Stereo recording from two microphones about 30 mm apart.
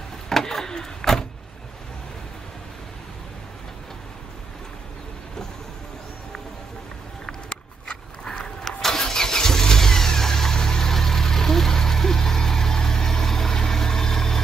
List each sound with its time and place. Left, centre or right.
0.3 s vehicle: centre
8.6 s vehicle: centre